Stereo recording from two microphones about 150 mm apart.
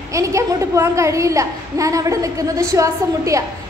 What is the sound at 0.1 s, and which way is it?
A woman's voice, 20° right (ahead or behind).